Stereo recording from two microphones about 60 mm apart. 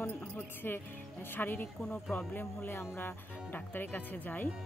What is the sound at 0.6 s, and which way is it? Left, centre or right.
Speech, left.